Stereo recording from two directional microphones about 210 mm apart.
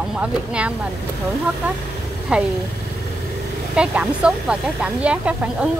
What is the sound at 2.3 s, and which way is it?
Speech, 5° right (ahead or behind).